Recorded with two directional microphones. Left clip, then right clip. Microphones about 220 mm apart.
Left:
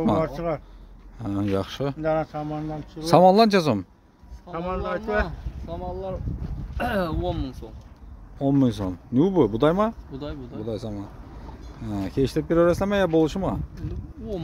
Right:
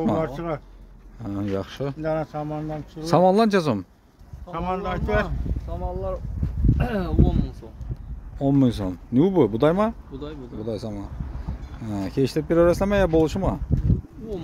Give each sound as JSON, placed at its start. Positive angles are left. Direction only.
{"t": 0.0, "sound": "speech", "side_deg": 10}
{"t": 2.0, "sound": "speech", "side_deg": -15}
{"t": 3.0, "sound": "speech", "side_deg": 10}
{"t": 4.5, "sound": "speech", "side_deg": -55}
{"t": 5.7, "sound": "speech", "side_deg": 20}
{"t": 8.4, "sound": "speech", "side_deg": -5}